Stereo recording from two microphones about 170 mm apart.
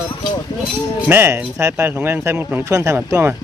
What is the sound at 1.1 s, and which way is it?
Speech, 15° right (ahead or behind).